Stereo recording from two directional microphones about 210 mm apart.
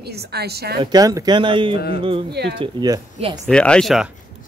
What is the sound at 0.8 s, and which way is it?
Speech, 15° right (ahead or behind).